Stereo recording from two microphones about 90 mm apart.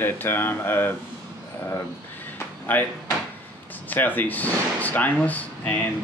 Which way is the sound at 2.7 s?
20° left (ahead or behind).